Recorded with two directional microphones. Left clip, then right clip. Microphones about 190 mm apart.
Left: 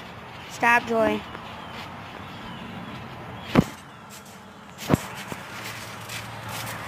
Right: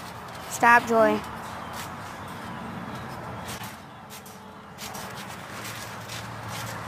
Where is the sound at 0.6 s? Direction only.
5° right (ahead or behind).